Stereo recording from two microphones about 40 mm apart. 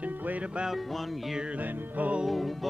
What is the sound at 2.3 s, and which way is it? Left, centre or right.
Music, centre.